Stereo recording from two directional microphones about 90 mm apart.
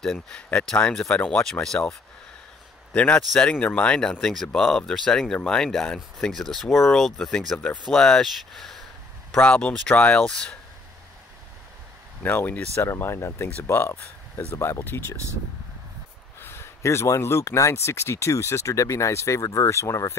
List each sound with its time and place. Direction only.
0.0 s a man's voice: 10° left (ahead or behind)
9.4 s speech: 15° left (ahead or behind)
12.2 s speech: 20° left (ahead or behind)
16.3 s speech: 25° left (ahead or behind)